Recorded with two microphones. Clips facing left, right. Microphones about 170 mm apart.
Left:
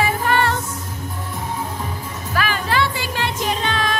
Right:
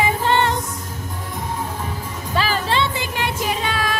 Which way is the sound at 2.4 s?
25° right (ahead or behind).